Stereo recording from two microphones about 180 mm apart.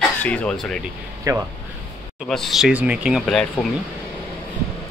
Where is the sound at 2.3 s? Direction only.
Centre (ahead or behind).